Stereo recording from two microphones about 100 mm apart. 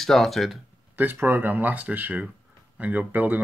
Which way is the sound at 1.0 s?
20° right (ahead or behind).